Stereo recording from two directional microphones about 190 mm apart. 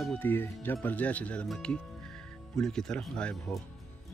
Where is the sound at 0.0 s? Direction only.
10° left (ahead or behind).